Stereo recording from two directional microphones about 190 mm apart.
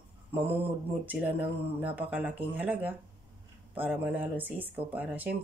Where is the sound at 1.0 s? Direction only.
10° right (ahead or behind).